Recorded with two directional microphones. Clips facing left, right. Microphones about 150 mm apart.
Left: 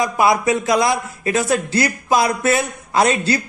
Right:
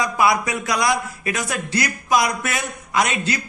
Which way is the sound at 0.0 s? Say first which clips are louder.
Left 3 dB; 25° left (ahead or behind).